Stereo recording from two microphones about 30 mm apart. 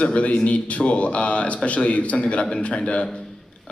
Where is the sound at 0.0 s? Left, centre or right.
Left.